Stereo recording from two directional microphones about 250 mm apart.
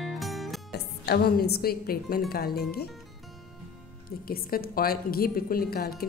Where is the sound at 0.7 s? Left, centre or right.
Left.